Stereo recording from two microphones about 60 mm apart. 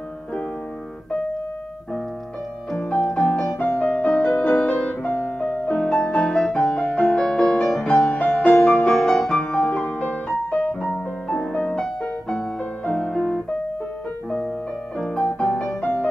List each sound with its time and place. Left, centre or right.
3.5 s music: left
15.0 s piano: centre
15.8 s music: left